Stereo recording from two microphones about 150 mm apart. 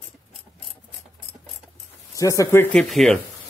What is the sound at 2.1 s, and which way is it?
Speech, 20° left (ahead or behind).